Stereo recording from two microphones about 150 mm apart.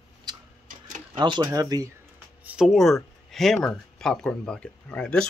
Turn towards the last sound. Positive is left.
turn(degrees=5)  # may be behind; listen again after turning